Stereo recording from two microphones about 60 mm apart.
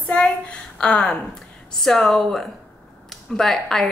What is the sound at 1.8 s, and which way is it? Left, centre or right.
A woman's voice, centre.